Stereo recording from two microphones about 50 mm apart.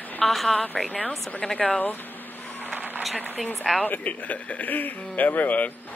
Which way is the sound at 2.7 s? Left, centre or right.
Right.